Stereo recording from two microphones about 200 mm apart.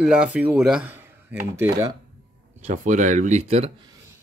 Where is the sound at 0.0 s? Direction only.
5° right (ahead or behind).